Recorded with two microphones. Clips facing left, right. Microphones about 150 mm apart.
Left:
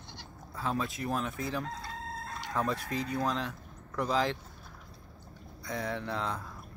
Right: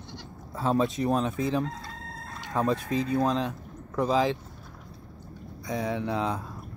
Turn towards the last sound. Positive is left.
turn(degrees=-15)  # may be behind; listen again after turning